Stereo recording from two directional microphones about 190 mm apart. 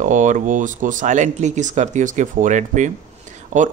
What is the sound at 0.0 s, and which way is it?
Speech, 40° right (ahead or behind).